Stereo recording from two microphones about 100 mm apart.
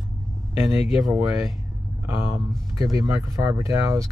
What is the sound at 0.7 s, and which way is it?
Speech, centre (ahead or behind).